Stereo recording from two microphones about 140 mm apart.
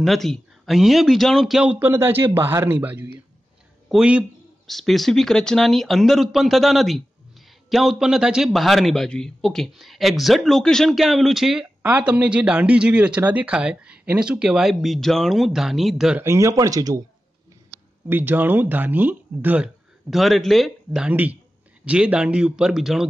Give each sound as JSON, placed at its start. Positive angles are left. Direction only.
{"t": 0.0, "sound": "a man's voice", "side_deg": 0}
{"t": 16.2, "sound": "speech", "side_deg": -20}
{"t": 18.0, "sound": "a man's voice", "side_deg": -15}